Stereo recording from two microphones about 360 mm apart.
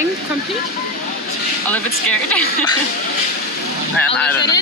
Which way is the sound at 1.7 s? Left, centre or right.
Centre.